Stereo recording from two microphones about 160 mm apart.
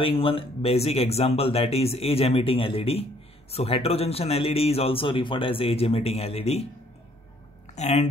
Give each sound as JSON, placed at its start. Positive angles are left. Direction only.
{"t": 0.0, "sound": "a man's voice", "side_deg": 35}
{"t": 7.7, "sound": "speech", "side_deg": 45}